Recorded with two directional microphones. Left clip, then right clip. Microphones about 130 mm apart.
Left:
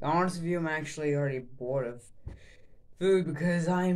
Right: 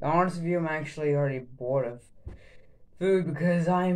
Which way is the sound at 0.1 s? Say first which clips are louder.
Right 3 dB; 5° left (ahead or behind).